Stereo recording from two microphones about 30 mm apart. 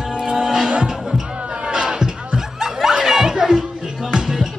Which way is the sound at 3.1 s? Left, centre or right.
Centre.